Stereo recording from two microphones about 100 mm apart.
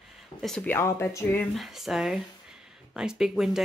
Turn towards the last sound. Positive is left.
turn(degrees=-5)  # may be behind; listen again after turning